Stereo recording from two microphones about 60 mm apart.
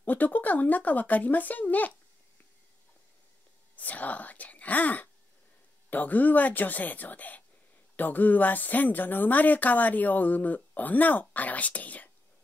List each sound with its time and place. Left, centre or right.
0.0 s speech: left
3.7 s speech: left